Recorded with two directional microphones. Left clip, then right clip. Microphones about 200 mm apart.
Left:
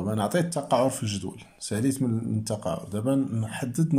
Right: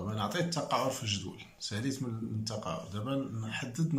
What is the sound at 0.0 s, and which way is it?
Speech, 35° left (ahead or behind).